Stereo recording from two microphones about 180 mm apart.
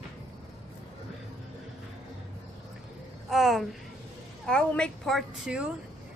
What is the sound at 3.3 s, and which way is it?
A woman's voice, centre (ahead or behind).